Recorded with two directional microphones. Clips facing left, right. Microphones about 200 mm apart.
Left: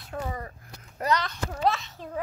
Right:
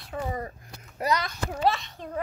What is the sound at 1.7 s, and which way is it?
Speech, centre (ahead or behind).